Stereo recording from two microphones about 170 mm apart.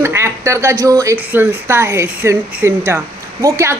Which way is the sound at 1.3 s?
15° right (ahead or behind).